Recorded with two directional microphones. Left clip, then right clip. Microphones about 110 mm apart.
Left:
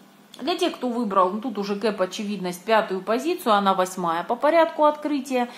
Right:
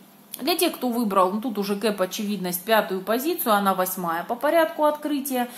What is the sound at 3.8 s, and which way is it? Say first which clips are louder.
Speech: left 2 dB; 30° left (ahead or behind).